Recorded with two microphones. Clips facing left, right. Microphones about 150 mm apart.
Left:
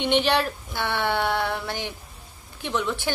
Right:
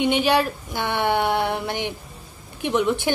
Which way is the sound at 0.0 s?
10° right (ahead or behind).